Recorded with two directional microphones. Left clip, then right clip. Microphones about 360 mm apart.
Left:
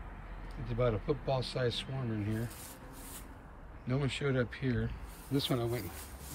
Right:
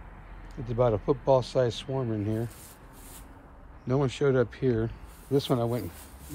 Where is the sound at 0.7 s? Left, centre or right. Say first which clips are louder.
Right 8 dB; centre.